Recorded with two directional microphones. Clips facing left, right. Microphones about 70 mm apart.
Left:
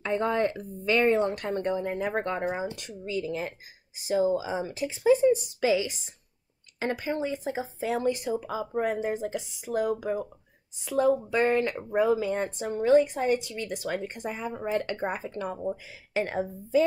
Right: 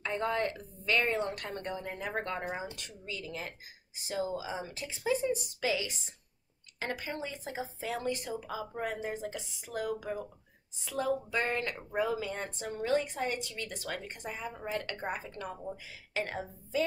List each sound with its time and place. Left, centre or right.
0.0 s speech: centre